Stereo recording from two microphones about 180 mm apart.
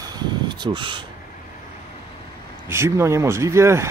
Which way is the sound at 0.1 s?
25° right (ahead or behind).